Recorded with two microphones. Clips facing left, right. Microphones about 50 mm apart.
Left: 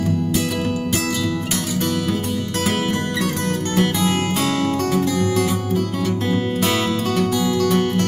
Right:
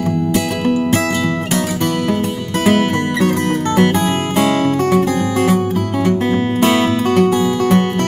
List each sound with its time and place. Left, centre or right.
0.3 s music: right
2.8 s music: right
4.4 s music: right
6.0 s music: right